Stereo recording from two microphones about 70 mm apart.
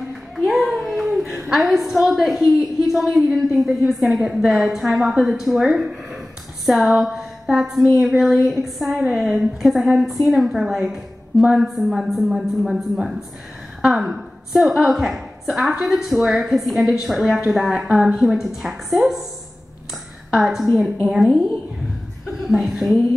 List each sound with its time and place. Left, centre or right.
0.5 s a sound: centre
1.5 s a woman's voice: centre
20.3 s a woman's voice: centre
22.5 s a woman's voice: centre